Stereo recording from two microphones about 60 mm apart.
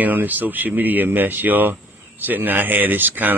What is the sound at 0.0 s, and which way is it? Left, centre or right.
Speech, right.